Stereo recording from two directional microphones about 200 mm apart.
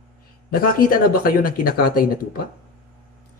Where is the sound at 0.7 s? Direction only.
45° left (ahead or behind).